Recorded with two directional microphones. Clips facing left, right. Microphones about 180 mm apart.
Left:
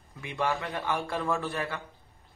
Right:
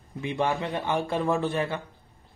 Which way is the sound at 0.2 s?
20° right (ahead or behind).